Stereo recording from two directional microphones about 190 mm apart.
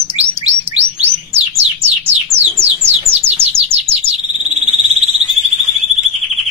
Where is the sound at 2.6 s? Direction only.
30° right (ahead or behind).